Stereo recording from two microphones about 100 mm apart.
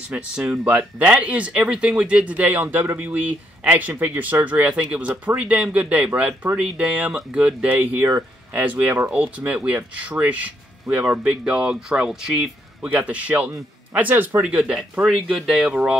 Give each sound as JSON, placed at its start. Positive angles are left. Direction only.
{"t": 0.1, "sound": "speech", "side_deg": -15}